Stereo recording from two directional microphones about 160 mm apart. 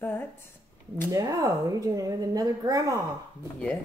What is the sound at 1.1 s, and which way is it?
A woman's voice, 20° right (ahead or behind).